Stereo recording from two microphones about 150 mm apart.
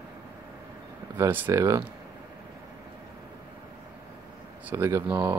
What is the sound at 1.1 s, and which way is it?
Speech, 15° right (ahead or behind).